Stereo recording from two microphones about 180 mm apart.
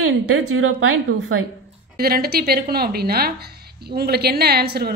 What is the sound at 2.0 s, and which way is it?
A woman's voice, 60° right (ahead or behind).